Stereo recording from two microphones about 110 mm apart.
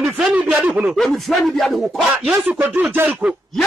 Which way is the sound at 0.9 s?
Centre (ahead or behind).